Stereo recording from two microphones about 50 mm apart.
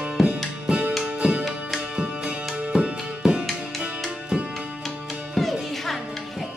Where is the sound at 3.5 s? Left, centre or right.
Centre.